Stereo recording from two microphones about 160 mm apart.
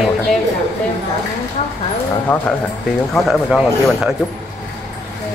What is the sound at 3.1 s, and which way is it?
Speech, centre (ahead or behind).